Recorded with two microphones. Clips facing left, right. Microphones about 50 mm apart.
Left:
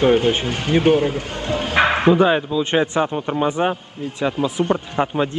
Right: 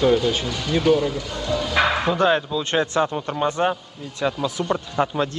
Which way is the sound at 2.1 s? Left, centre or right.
Centre.